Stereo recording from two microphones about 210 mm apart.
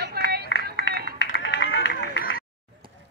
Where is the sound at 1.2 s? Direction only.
55° left (ahead or behind).